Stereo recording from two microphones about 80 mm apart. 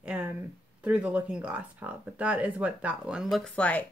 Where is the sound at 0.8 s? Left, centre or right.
Centre.